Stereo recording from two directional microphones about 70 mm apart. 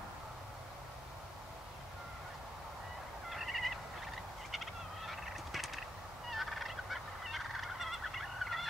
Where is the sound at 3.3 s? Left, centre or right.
Centre.